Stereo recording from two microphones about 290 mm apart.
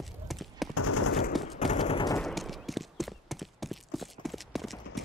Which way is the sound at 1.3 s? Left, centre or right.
Centre.